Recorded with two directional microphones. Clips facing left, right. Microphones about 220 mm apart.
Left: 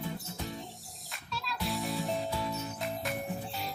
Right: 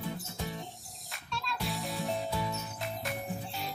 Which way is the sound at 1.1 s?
5° left (ahead or behind).